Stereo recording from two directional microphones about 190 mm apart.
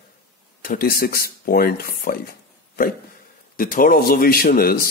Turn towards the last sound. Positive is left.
turn(degrees=50)  # may be behind; listen again after turning